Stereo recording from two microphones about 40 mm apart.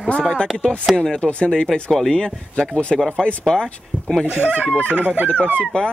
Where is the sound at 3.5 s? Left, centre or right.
Centre.